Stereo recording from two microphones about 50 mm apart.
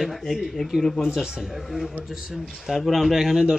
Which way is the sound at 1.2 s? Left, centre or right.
Centre.